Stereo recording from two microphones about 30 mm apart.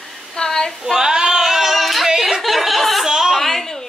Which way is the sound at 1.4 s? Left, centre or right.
Centre.